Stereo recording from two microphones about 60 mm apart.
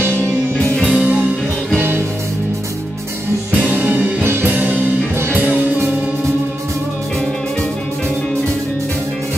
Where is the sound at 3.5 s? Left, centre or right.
Right.